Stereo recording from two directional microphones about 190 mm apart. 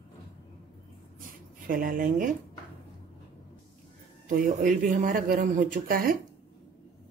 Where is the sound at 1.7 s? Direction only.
50° right (ahead or behind).